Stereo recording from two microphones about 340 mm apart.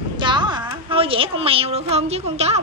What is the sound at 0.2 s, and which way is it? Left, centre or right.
A woman's voice, centre.